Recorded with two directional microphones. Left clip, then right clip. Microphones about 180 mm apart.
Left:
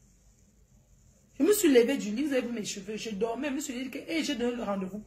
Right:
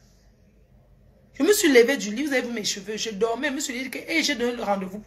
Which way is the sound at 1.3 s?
15° left (ahead or behind).